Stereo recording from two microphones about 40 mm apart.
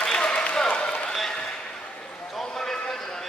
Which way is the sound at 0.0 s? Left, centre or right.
Left.